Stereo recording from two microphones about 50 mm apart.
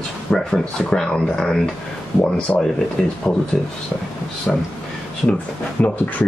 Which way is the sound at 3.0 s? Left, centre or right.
Left.